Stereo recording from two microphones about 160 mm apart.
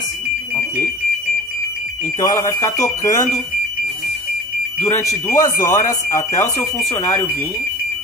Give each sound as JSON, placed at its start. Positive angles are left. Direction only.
{"t": 2.1, "sound": "speech", "side_deg": 20}
{"t": 4.8, "sound": "speech", "side_deg": 20}